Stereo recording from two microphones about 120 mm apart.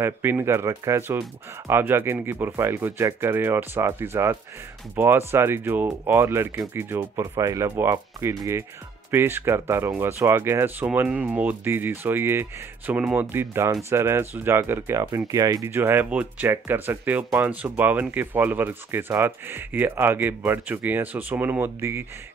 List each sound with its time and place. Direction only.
0.0 s speech: 20° right (ahead or behind)